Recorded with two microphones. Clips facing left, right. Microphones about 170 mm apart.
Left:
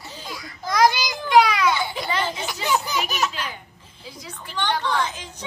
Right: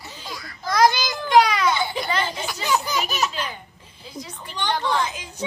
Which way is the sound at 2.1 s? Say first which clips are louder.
Even; 20° left (ahead or behind).